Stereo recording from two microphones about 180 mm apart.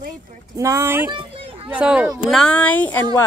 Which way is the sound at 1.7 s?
5° right (ahead or behind).